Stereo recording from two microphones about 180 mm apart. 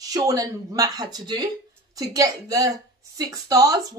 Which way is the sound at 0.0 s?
20° right (ahead or behind).